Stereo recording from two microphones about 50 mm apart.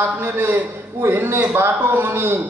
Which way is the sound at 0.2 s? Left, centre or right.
Right.